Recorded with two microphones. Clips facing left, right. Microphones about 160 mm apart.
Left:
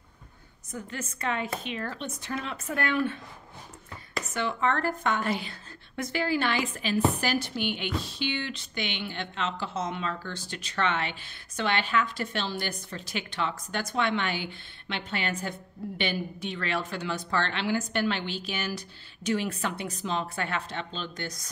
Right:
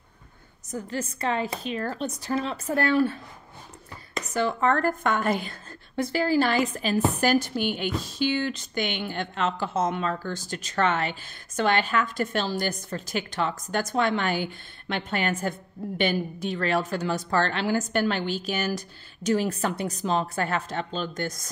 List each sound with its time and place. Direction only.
0.7 s speech: 35° right (ahead or behind)
4.3 s speech: 40° right (ahead or behind)
5.9 s speech: 35° right (ahead or behind)